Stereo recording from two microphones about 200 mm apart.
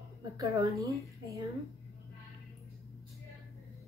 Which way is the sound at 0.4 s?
15° right (ahead or behind).